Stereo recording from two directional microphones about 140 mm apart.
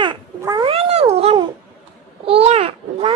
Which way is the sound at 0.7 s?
50° right (ahead or behind).